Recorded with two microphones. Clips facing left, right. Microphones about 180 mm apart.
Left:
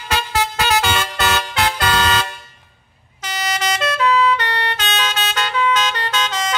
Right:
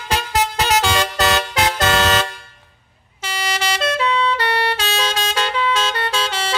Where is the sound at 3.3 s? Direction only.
30° right (ahead or behind).